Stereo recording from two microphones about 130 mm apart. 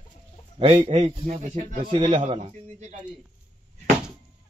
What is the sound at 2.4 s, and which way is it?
Speech, 60° right (ahead or behind).